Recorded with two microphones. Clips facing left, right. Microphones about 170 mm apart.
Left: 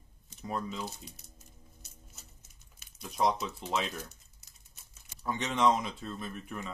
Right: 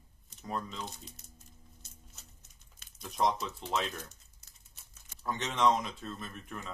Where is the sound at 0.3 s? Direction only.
5° left (ahead or behind).